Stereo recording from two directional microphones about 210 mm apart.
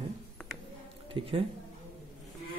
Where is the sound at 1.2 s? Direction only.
25° right (ahead or behind).